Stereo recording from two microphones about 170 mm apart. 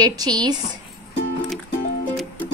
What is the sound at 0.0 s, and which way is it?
Speech, 20° right (ahead or behind).